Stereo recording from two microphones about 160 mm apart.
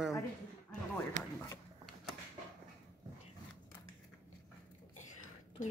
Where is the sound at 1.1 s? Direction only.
50° right (ahead or behind).